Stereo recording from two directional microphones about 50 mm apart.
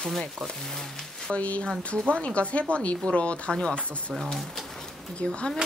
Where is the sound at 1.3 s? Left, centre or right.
Left.